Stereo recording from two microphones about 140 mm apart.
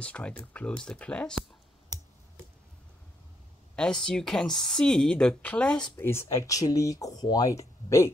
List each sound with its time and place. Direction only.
0.0 s speech: 10° left (ahead or behind)
3.7 s speech: 5° left (ahead or behind)
5.9 s speech: 20° left (ahead or behind)